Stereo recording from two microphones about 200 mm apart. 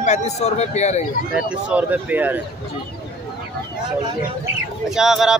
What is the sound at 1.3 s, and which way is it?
Speech, 10° right (ahead or behind).